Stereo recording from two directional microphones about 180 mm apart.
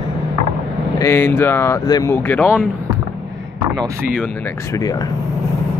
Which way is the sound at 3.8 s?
5° left (ahead or behind).